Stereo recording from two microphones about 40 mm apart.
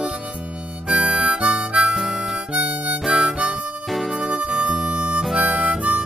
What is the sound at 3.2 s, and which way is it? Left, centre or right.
Harmonica, right.